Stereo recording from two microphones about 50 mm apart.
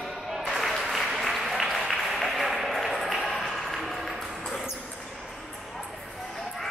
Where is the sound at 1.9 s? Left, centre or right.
Centre.